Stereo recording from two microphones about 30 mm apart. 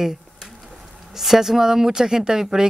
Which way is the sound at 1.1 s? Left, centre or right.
Centre.